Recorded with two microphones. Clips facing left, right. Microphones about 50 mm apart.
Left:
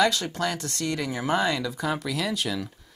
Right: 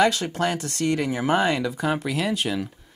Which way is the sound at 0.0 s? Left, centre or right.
Right.